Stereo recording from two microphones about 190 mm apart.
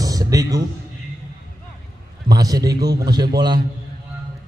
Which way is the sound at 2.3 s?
20° right (ahead or behind).